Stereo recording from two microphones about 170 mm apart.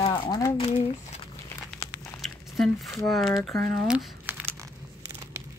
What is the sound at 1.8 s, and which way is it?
Crumpling, 20° left (ahead or behind).